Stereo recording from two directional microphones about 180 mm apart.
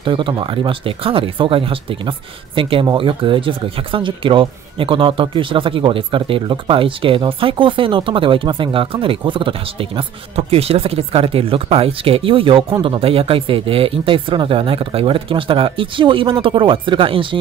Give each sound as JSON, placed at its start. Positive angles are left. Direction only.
{"t": 0.0, "sound": "speech", "side_deg": -25}